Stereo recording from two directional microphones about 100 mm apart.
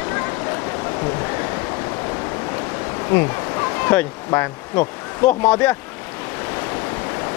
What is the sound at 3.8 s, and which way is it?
Speech, 25° left (ahead or behind).